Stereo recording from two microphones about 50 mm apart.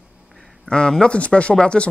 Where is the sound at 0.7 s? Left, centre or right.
Centre.